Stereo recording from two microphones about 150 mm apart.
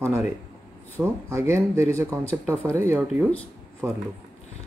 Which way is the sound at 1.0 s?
15° right (ahead or behind).